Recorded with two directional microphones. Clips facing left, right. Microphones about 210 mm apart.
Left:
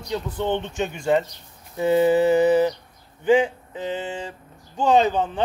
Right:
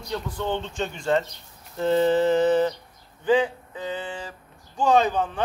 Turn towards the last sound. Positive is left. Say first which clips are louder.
# left 2 dB
turn(degrees=20)  # may be behind; listen again after turning